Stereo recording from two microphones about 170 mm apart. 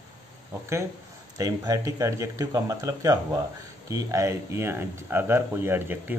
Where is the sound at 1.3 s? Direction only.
20° right (ahead or behind).